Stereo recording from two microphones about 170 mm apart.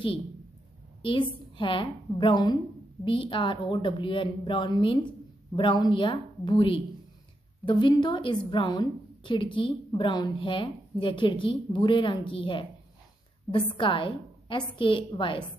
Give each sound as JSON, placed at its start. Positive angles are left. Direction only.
{"t": 1.0, "sound": "a woman's voice", "side_deg": 30}